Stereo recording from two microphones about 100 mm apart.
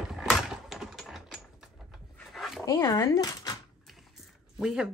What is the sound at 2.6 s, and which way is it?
Speech, 30° left (ahead or behind).